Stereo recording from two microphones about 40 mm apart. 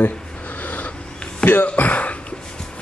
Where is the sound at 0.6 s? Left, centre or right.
Left.